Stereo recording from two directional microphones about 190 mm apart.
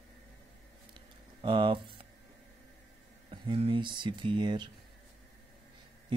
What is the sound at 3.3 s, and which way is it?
Speech, 30° right (ahead or behind).